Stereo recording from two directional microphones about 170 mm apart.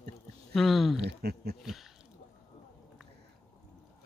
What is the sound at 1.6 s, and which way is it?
Speech, centre (ahead or behind).